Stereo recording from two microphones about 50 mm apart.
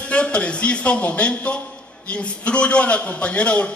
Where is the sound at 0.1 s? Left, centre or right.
Left.